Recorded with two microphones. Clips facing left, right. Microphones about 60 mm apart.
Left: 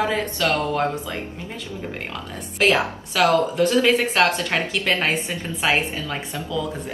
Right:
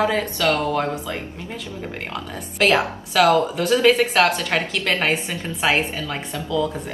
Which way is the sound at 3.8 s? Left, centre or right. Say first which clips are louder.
Right 4 dB; centre.